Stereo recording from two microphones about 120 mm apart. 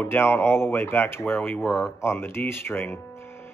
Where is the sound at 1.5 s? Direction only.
5° right (ahead or behind).